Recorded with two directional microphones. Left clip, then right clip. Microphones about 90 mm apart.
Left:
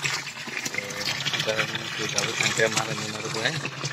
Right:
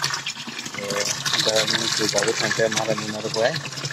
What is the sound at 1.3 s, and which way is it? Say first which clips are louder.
Speech: right 9 dB; 30° right (ahead or behind).